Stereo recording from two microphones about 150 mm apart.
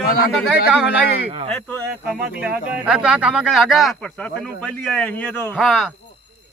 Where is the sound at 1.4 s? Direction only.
5° left (ahead or behind).